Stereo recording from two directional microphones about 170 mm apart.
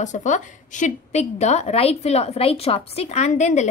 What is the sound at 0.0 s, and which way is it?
A woman's voice, 45° left (ahead or behind).